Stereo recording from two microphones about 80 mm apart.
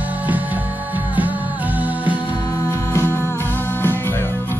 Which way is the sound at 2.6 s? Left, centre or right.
Left.